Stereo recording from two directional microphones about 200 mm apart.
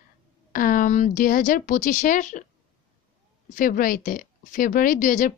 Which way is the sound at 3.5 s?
45° left (ahead or behind).